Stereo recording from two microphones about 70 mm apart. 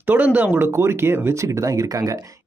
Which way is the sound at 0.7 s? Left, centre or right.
Right.